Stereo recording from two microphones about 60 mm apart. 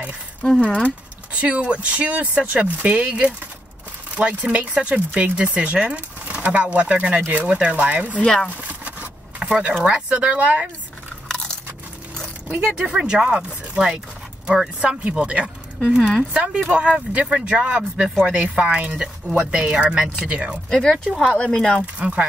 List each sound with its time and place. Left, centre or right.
1.3 s speech: right
8.2 s speech: centre
8.5 s a sound: right
9.4 s speech: centre
11.2 s crunch: centre
12.5 s speech: centre
20.7 s speech: centre
21.9 s speech: centre